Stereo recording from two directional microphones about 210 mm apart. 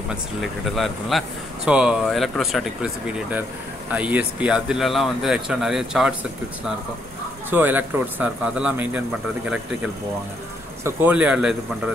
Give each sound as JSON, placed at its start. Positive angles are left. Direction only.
{"t": 0.1, "sound": "speech", "side_deg": 0}
{"t": 7.5, "sound": "a man's voice", "side_deg": -10}
{"t": 10.8, "sound": "a man's voice", "side_deg": -10}